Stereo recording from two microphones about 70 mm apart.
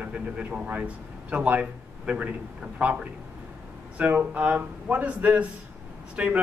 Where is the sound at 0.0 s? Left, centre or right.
Right.